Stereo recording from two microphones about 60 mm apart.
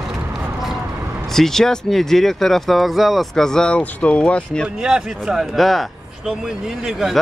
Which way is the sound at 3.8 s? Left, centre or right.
Left.